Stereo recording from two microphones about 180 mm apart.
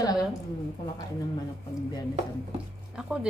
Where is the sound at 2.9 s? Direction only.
5° right (ahead or behind).